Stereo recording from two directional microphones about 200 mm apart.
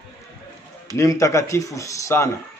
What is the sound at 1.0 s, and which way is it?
A man's voice, 15° left (ahead or behind).